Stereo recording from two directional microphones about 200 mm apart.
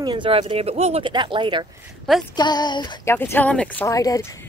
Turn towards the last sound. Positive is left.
turn(degrees=15)  # may be behind; listen again after turning